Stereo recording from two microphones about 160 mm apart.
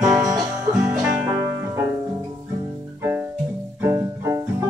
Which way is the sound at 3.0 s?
15° right (ahead or behind).